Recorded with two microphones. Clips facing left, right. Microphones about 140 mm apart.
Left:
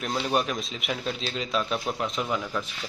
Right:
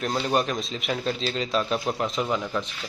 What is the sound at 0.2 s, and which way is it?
Speech, 5° left (ahead or behind).